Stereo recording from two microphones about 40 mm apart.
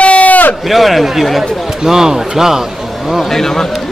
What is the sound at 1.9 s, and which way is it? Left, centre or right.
Speech, centre.